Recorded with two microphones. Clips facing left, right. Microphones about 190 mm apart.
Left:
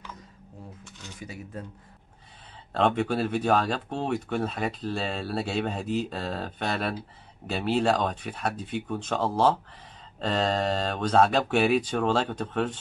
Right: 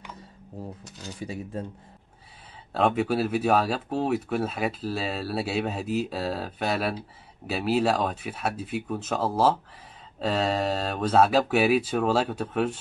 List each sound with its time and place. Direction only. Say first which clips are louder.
0.8 s speech: right 6 dB; 35° right (ahead or behind)
2.7 s speech: right 1 dB; 5° right (ahead or behind)